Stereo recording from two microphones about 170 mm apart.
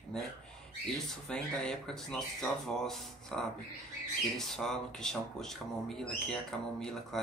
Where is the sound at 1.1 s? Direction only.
5° left (ahead or behind).